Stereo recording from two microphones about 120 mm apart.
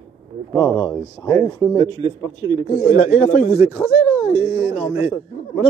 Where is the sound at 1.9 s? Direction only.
45° right (ahead or behind).